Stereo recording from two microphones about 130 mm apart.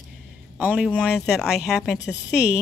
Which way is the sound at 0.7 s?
Centre (ahead or behind).